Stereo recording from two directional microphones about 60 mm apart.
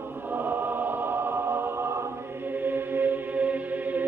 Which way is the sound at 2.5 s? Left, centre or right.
Right.